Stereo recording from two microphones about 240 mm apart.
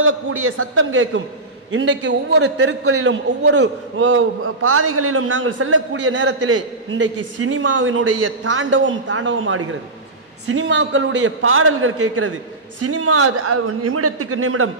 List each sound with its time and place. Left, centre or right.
0.0 s a man's voice: right
2.8 s a man's voice: right
12.8 s a man's voice: right